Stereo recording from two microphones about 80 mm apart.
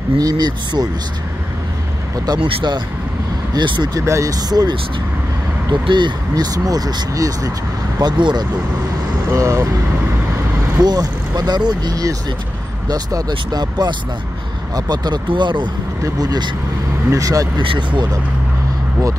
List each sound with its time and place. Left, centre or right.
0.2 s speech: right
2.2 s speech: right
3.9 s speech: right
5.7 s speech: right
8.0 s speech: right
9.3 s speech: right
10.8 s speech: right
16.0 s speech: right
17.6 s speech: right